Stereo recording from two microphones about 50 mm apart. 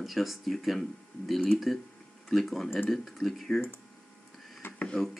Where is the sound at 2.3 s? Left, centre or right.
Centre.